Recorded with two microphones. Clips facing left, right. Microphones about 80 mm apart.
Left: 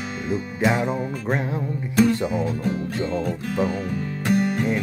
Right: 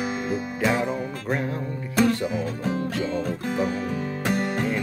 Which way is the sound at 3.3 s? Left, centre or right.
Centre.